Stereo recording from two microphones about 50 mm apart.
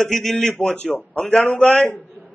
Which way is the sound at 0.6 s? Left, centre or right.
Centre.